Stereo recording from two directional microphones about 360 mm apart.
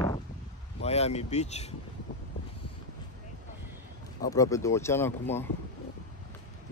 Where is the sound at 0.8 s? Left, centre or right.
Centre.